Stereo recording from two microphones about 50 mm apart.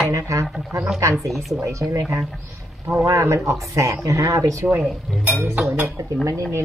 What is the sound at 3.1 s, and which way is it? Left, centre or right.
Speech, right.